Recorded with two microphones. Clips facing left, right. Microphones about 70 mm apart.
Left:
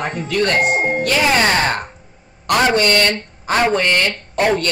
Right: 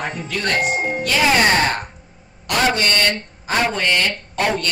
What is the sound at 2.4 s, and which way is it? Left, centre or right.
Speech, left.